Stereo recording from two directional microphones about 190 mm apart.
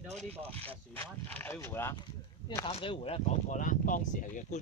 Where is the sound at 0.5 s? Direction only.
10° left (ahead or behind).